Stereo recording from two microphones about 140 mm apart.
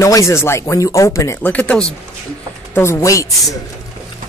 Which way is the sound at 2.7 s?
20° left (ahead or behind).